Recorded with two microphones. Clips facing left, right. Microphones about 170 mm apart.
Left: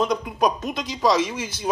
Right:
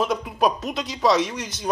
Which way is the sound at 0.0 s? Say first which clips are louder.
Even; 5° right (ahead or behind).